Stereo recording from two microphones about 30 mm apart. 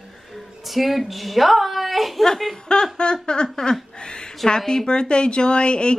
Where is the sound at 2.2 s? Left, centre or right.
Centre.